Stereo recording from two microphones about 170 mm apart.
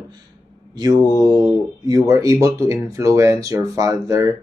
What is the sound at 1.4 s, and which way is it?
Speech, 20° right (ahead or behind).